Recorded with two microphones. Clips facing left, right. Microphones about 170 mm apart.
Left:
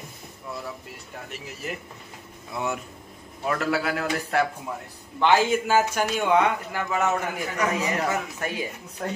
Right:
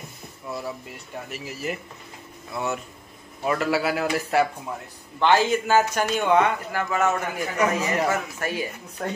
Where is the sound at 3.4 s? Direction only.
5° right (ahead or behind).